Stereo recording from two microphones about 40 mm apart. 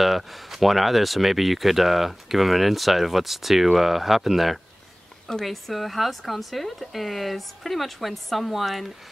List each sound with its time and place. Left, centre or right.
0.0 s speech: centre